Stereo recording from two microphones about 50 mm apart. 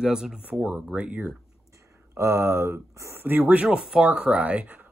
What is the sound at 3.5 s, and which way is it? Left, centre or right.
Speech, centre.